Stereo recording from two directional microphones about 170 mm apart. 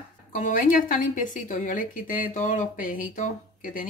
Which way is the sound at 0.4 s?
50° left (ahead or behind).